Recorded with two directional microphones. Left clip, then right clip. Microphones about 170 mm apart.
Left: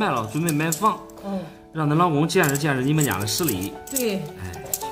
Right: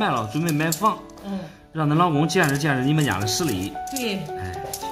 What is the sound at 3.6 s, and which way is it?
Speech, 45° left (ahead or behind).